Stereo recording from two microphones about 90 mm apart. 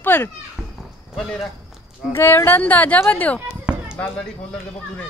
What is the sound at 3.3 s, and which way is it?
Chop, 10° right (ahead or behind).